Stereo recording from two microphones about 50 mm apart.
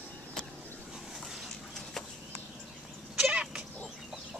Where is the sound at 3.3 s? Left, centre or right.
Centre.